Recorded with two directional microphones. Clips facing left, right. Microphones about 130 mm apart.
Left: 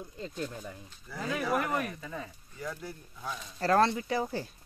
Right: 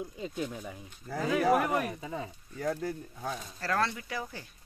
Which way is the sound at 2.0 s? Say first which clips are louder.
Right 3 dB; 25° right (ahead or behind).